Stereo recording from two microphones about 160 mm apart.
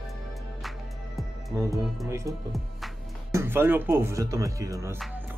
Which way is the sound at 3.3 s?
15° right (ahead or behind).